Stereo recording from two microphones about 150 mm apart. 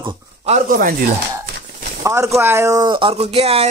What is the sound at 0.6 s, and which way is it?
Speech, 70° right (ahead or behind).